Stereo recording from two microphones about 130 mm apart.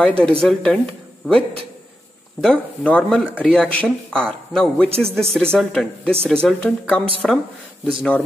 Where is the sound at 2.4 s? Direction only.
5° left (ahead or behind).